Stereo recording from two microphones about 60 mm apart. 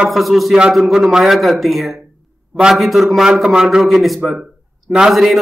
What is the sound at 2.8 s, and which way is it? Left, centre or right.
A man's voice, centre.